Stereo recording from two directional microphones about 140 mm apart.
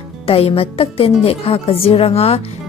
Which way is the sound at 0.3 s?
45° left (ahead or behind).